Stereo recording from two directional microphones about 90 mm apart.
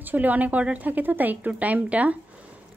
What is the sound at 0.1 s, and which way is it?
A woman's voice, 20° right (ahead or behind).